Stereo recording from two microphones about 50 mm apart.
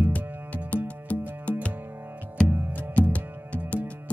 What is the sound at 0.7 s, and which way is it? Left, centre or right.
Music, left.